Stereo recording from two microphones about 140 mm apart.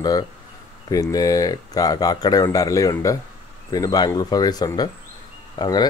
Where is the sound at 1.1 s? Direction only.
25° left (ahead or behind).